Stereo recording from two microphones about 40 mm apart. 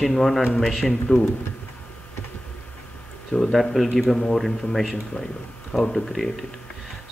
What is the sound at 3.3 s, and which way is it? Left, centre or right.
A man's voice, centre.